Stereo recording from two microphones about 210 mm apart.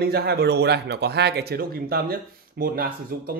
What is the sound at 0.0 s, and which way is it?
Speech, 50° right (ahead or behind).